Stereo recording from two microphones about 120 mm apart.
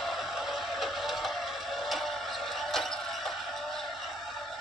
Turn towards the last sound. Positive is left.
turn(degrees=0)  # may be behind; listen again after turning